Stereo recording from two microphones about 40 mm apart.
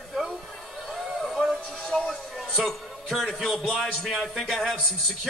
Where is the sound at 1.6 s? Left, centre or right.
Centre.